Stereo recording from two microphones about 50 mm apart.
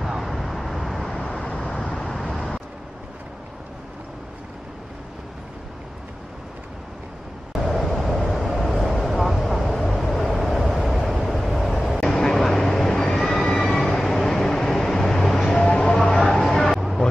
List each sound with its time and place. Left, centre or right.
0.0 s vehicle: centre
1.4 s vehicle: centre
2.0 s vehicle: centre
7.6 s vehicle: centre
12.0 s train: centre
15.6 s a sound: left
16.1 s music: centre